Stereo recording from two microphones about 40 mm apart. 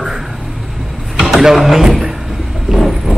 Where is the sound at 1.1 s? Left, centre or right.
Centre.